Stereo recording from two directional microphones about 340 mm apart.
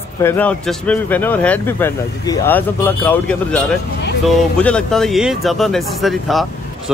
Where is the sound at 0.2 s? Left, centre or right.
Centre.